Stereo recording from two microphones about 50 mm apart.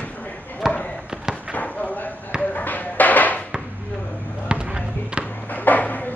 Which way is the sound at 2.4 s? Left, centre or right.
Left.